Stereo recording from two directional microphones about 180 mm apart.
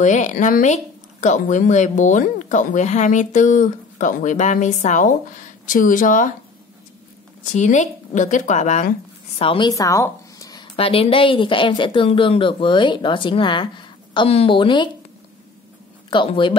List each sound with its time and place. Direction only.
0.0 s speech: 40° left (ahead or behind)
7.5 s speech: 40° left (ahead or behind)
9.4 s a woman's voice: 30° left (ahead or behind)
16.1 s a woman's voice: 25° left (ahead or behind)